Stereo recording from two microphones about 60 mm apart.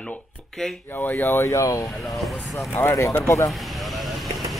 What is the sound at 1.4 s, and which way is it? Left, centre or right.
Speech, left.